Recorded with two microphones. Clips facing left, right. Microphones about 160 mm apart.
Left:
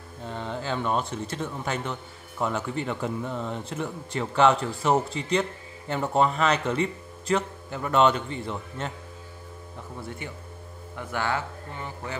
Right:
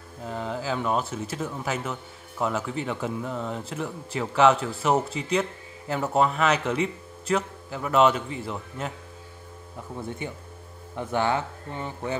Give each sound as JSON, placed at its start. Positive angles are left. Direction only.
{"t": 0.2, "sound": "speech", "side_deg": -5}
{"t": 10.0, "sound": "speech", "side_deg": -20}